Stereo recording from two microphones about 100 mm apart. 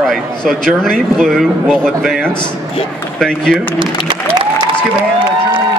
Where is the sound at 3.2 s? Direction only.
5° left (ahead or behind).